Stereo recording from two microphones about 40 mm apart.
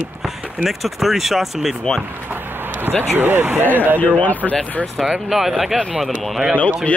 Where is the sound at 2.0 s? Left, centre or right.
Right.